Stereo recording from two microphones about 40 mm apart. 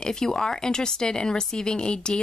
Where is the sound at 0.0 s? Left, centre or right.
Centre.